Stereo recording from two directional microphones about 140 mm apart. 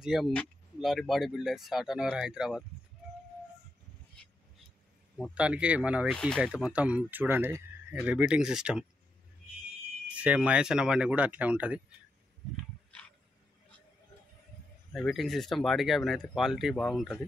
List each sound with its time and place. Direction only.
0.0 s speech: centre (ahead or behind)
5.3 s speech: 10° right (ahead or behind)
6.1 s speech: 5° left (ahead or behind)
6.4 s speech: 5° right (ahead or behind)
10.0 s speech: 10° right (ahead or behind)
12.9 s a sound: 10° left (ahead or behind)
14.9 s speech: 5° left (ahead or behind)